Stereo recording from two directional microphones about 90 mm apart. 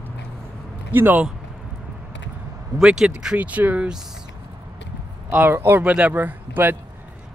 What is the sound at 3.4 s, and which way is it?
Speech, 20° right (ahead or behind).